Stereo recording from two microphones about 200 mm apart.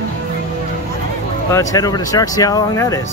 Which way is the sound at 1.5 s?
15° left (ahead or behind).